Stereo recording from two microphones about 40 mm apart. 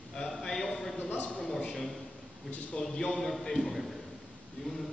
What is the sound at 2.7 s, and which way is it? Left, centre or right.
A man's voice, centre.